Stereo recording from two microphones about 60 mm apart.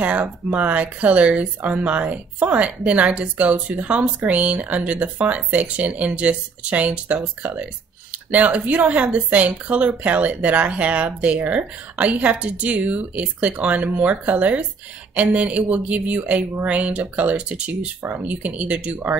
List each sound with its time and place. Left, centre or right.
0.0 s speech: right